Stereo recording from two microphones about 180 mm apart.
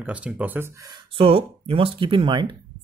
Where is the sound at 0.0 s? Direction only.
10° right (ahead or behind).